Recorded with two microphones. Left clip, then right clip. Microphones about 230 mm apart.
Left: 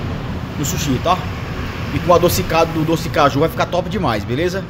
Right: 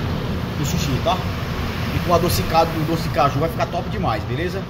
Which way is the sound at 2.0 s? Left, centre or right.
Left.